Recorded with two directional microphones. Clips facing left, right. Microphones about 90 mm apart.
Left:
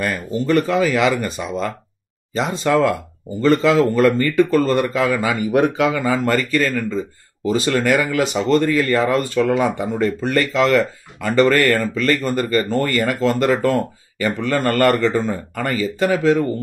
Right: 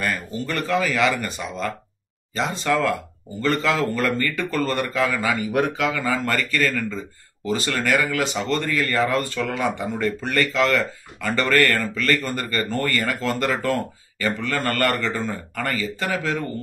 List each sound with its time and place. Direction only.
0.0 s speech: 15° left (ahead or behind)
2.3 s speech: 20° left (ahead or behind)